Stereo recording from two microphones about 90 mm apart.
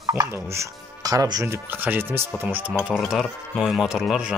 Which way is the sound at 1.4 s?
25° right (ahead or behind).